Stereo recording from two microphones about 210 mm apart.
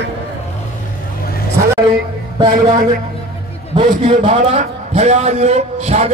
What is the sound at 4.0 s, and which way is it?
A man's voice, 30° right (ahead or behind).